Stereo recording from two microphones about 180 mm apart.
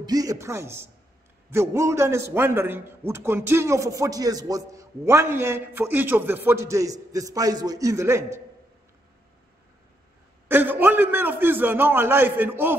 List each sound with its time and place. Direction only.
0.0 s a man's voice: 20° right (ahead or behind)
10.5 s a man's voice: 10° right (ahead or behind)